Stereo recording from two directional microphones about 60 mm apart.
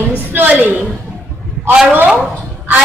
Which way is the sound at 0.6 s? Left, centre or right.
Right.